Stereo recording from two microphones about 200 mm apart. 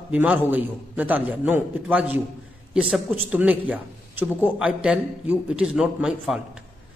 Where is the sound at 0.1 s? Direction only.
10° right (ahead or behind).